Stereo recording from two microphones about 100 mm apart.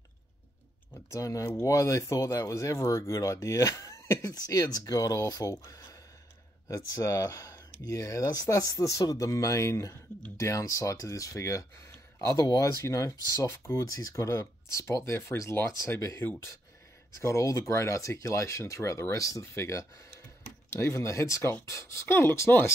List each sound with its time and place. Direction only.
1.1 s speech: 30° left (ahead or behind)